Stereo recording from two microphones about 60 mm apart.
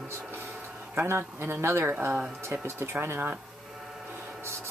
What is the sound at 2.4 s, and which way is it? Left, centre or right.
Speech, right.